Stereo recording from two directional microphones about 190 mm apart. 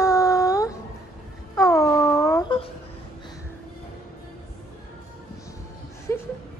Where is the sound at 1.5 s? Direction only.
15° left (ahead or behind).